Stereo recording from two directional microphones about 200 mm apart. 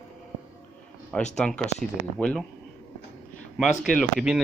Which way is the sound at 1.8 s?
45° right (ahead or behind).